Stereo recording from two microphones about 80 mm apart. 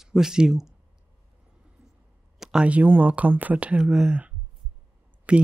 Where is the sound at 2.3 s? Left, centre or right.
Centre.